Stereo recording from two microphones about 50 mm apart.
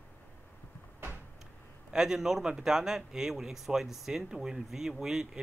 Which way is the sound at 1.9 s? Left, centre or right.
Centre.